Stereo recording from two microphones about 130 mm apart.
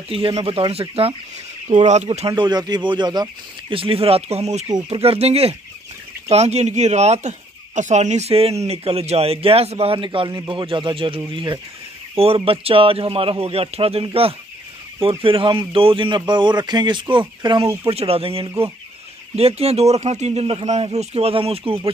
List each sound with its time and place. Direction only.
0.1 s speech: 45° right (ahead or behind)
2.2 s speech: 35° right (ahead or behind)
3.7 s speech: 45° right (ahead or behind)
4.8 s speech: 50° right (ahead or behind)
17.8 s speech: 50° right (ahead or behind)